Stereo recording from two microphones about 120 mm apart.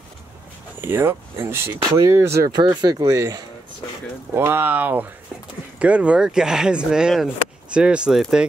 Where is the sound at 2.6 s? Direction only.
35° right (ahead or behind).